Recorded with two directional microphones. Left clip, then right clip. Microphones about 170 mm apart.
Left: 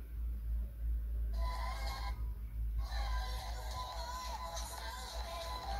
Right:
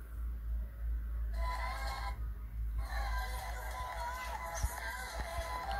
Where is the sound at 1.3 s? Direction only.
15° right (ahead or behind).